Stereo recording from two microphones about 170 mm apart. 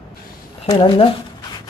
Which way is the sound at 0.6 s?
30° left (ahead or behind).